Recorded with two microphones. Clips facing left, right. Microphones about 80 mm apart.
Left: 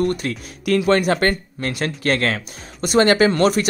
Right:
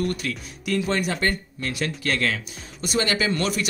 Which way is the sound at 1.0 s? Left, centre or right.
Left.